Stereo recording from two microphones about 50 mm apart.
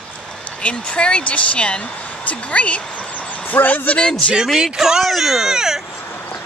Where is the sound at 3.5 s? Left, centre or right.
Left.